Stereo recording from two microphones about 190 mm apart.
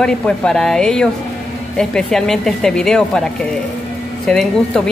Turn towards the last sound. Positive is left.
turn(degrees=5)  # may be behind; listen again after turning